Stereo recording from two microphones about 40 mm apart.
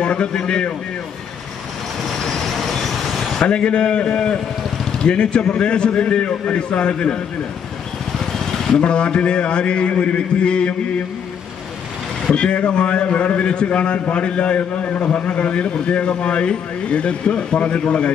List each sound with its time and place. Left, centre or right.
0.0 s a man's voice: left
2.2 s vehicle: centre
3.4 s a man's voice: left
8.8 s a man's voice: left
12.3 s a man's voice: left